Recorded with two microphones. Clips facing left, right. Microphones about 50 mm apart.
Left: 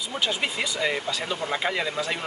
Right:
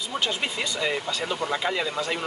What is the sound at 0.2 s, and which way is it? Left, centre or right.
Speech, centre.